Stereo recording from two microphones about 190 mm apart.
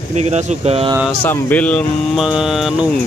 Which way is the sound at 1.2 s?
10° left (ahead or behind).